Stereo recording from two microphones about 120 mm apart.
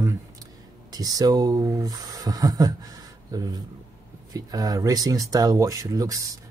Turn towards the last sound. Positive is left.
turn(degrees=-30)  # may be behind; listen again after turning